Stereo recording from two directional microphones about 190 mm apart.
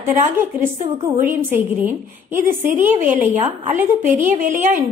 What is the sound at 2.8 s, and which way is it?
A woman's voice, 40° right (ahead or behind).